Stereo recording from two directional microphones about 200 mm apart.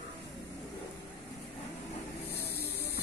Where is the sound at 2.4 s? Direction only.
50° left (ahead or behind).